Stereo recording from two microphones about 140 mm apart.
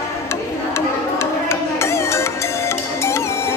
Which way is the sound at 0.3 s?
20° left (ahead or behind).